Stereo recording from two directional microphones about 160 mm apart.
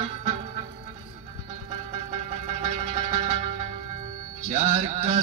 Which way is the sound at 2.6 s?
45° right (ahead or behind).